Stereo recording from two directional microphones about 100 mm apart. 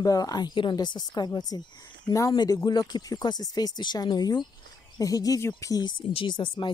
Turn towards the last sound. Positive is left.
turn(degrees=50)  # may be behind; listen again after turning